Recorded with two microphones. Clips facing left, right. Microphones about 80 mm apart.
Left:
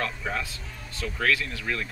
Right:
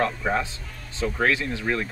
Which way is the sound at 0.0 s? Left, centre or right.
Right.